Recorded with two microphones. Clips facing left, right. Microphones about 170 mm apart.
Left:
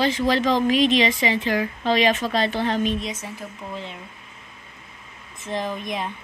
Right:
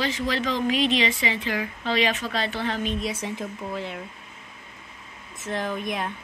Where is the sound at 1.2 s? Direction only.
40° left (ahead or behind).